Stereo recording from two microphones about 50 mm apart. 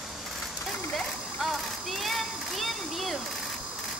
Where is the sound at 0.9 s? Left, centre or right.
Centre.